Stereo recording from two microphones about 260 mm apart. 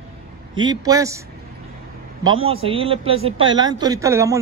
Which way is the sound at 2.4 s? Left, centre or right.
Right.